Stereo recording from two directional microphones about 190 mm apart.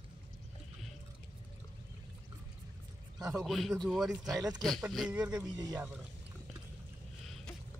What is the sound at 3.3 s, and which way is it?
Speech, centre (ahead or behind).